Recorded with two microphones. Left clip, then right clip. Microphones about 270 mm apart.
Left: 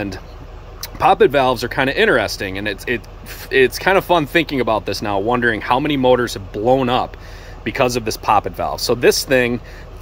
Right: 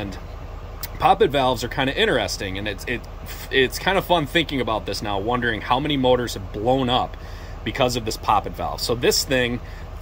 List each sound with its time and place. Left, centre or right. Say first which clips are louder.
0.9 s speech: left 5 dB; centre